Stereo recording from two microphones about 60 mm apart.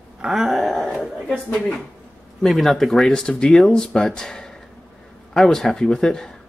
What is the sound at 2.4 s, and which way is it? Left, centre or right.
Speech, centre.